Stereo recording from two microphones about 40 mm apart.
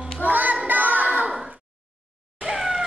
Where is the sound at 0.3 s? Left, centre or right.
Right.